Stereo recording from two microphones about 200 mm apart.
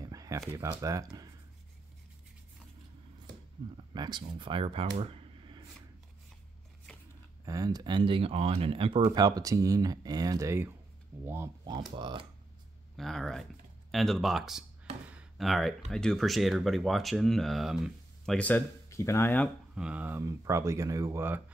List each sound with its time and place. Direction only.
0.0 s a sound: 15° right (ahead or behind)
0.6 s speech: 15° right (ahead or behind)
3.9 s speech: 20° right (ahead or behind)
7.4 s speech: 20° right (ahead or behind)
12.9 s speech: centre (ahead or behind)
15.0 s a sound: 5° right (ahead or behind)
15.9 s speech: 5° left (ahead or behind)
19.7 s speech: 5° right (ahead or behind)